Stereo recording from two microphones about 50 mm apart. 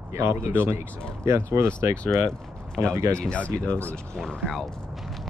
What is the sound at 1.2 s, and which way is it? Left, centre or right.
Speech, right.